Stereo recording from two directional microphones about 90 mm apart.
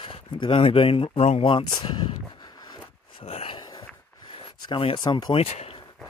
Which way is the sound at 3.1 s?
70° left (ahead or behind).